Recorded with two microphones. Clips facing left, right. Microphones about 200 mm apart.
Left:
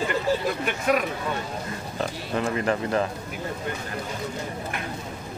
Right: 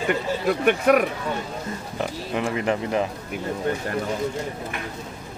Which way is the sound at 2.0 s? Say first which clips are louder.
Right 1 dB; 15° right (ahead or behind).